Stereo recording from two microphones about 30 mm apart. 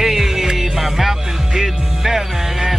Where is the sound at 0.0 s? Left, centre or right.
Centre.